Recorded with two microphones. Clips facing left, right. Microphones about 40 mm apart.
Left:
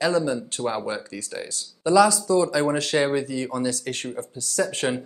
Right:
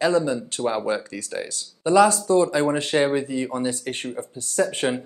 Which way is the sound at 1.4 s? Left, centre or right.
Right.